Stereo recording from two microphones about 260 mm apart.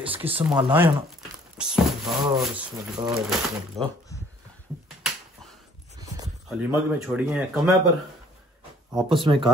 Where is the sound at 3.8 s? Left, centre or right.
Centre.